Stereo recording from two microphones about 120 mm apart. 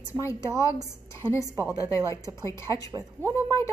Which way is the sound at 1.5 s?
25° right (ahead or behind).